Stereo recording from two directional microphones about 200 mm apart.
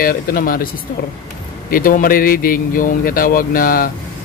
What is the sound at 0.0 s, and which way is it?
Speech, 45° left (ahead or behind).